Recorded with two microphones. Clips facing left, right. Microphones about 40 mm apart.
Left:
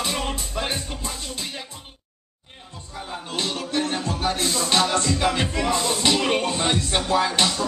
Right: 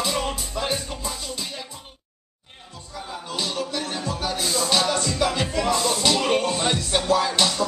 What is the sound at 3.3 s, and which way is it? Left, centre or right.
Music, left.